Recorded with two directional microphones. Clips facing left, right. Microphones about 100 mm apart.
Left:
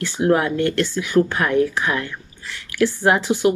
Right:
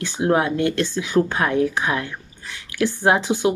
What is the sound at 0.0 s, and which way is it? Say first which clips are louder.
Speech: left 1 dB; 20° right (ahead or behind).